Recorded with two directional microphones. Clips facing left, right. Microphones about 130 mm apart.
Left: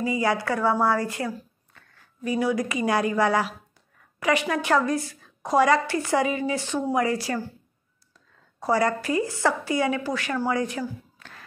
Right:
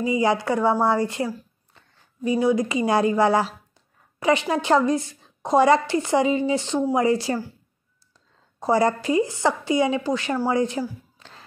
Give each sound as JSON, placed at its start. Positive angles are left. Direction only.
{"t": 0.0, "sound": "a woman's voice", "side_deg": -20}
{"t": 8.5, "sound": "a woman's voice", "side_deg": -25}